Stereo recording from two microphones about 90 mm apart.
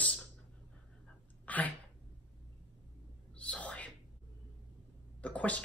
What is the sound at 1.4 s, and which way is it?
Sneeze, 15° left (ahead or behind).